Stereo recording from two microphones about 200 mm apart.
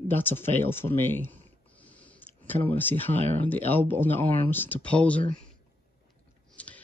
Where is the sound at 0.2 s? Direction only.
10° left (ahead or behind).